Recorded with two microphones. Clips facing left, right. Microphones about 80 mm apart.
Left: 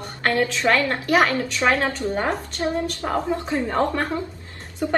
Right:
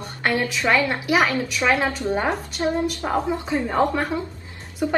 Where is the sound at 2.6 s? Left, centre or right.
Right.